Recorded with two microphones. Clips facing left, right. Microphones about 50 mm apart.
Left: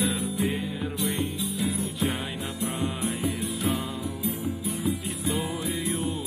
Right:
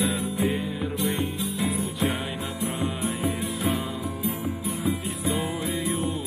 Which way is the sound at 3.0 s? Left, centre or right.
Right.